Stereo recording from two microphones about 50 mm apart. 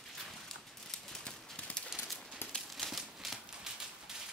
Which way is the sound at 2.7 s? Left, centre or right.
Centre.